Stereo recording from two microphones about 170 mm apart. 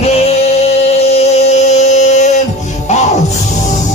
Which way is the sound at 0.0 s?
40° left (ahead or behind).